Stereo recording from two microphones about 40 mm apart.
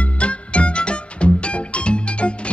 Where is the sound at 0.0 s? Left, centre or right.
Left.